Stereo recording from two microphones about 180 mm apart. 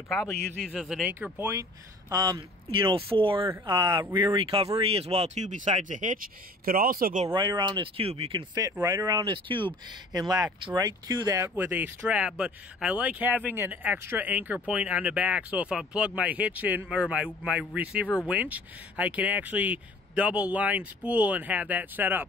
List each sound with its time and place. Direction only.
0.7 s speech: centre (ahead or behind); by 7.2 s 50° right (ahead or behind)
7.3 s speech: 25° right (ahead or behind)